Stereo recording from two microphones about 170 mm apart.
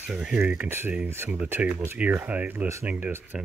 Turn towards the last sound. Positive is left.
turn(degrees=-10)  # may be behind; listen again after turning